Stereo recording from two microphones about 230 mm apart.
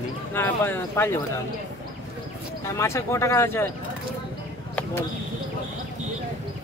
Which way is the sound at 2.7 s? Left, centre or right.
Centre.